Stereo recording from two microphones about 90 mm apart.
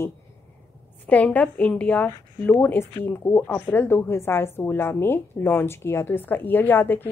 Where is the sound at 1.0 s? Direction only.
15° left (ahead or behind).